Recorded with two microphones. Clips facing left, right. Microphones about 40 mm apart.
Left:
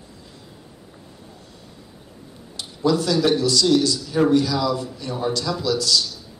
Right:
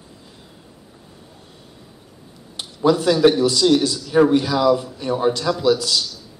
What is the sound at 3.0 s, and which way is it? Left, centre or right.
A man's voice, right.